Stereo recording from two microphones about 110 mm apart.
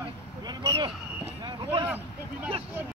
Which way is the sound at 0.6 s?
50° right (ahead or behind).